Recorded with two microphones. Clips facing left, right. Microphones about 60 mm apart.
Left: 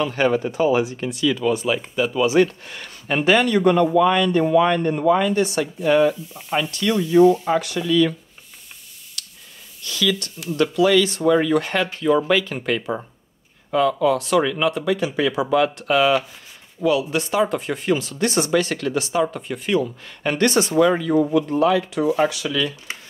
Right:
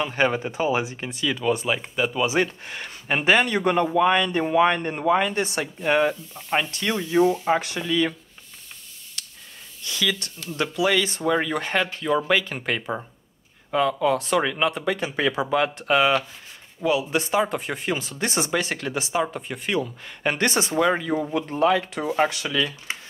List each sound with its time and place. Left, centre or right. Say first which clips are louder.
0.0 s speech: left 3 dB; right
2.0 s speech: left 3 dB; centre
2.2 s speech: left 6 dB; right
9.8 s speech: left 4 dB; right
13.7 s speech: left 3 dB; right
14.9 s speech: left 3 dB; right
15.5 s speech: left 3 dB; right; by 19.9 s centre
20.2 s speech: left 4 dB; right
21.3 s speech: left 3 dB; right